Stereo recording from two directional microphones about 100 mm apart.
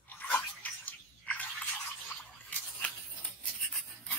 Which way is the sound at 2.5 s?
10° left (ahead or behind).